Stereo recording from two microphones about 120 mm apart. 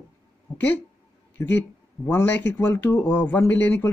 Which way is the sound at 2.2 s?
15° left (ahead or behind).